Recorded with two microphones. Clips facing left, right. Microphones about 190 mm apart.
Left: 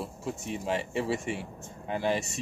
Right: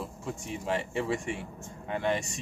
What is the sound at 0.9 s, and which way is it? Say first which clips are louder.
Speech: left 1 dB; 5° left (ahead or behind).